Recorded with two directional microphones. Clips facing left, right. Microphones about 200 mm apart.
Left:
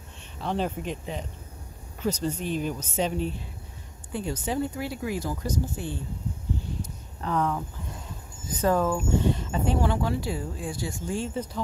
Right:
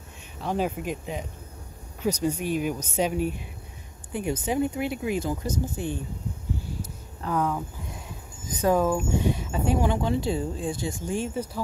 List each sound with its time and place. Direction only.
0.5 s speech: 10° right (ahead or behind)
7.2 s speech: 5° right (ahead or behind)